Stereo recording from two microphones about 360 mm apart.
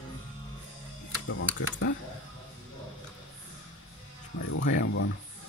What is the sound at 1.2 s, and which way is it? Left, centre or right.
Speech, left.